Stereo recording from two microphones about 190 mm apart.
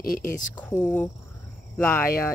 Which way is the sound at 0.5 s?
10° left (ahead or behind).